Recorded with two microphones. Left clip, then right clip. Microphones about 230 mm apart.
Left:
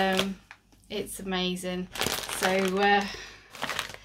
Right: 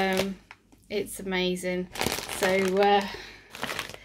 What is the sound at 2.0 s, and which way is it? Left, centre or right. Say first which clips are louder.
Speech: left 2 dB; centre.